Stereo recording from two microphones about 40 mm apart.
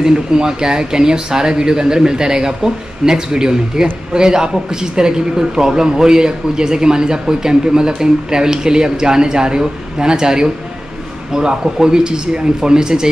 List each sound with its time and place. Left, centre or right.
0.0 s a man's voice: centre